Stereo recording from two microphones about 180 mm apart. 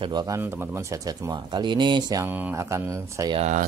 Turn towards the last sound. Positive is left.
turn(degrees=-40)  # may be behind; listen again after turning